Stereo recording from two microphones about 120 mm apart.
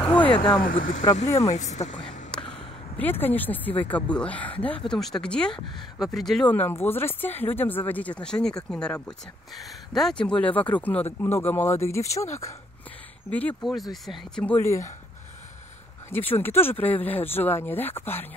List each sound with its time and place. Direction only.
0.0 s a sound: 10° left (ahead or behind)
0.7 s speech: 90° left
1.2 s speech: 25° left (ahead or behind)
1.5 s speech: 75° left (ahead or behind)
2.0 s a sound: 5° left (ahead or behind)
3.0 s speech: 15° left (ahead or behind)
6.5 s speech: 15° left (ahead or behind)
13.3 s speech: 10° left (ahead or behind)
14.0 s speech: centre (ahead or behind)
14.4 s speech: 15° left (ahead or behind)
16.1 s speech: 15° left (ahead or behind)